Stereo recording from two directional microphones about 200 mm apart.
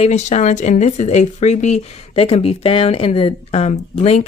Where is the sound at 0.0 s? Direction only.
35° left (ahead or behind).